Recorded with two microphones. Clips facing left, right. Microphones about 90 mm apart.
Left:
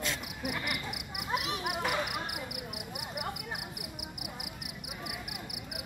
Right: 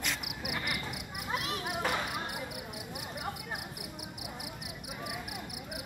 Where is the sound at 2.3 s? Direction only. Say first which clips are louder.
Even; 65° left (ahead or behind).